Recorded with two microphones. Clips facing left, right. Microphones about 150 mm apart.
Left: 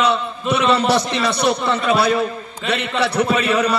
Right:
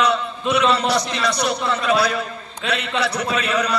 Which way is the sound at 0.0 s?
30° left (ahead or behind).